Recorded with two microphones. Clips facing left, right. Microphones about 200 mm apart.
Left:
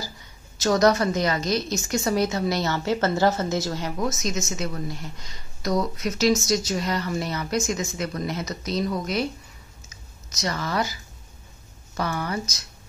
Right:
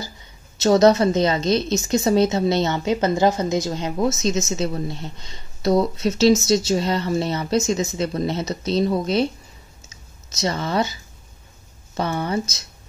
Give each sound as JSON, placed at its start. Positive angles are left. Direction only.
{"t": 0.6, "sound": "a woman's voice", "side_deg": -25}
{"t": 10.3, "sound": "a woman's voice", "side_deg": -25}